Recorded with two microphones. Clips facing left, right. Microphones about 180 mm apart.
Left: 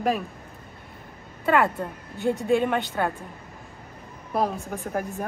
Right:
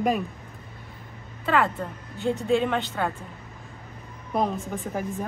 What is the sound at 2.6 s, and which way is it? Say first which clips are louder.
Speech: left 1 dB; 5° left (ahead or behind).